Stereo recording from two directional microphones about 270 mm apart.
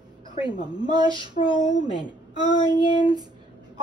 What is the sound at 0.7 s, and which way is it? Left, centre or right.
Speech, centre.